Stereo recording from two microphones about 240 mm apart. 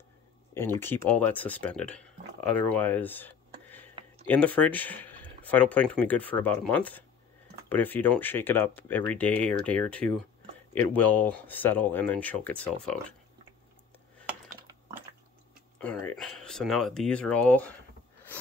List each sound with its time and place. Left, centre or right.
0.6 s speech: centre
15.8 s speech: centre